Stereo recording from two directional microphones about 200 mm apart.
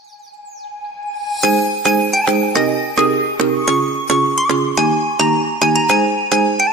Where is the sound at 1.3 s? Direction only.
Centre (ahead or behind).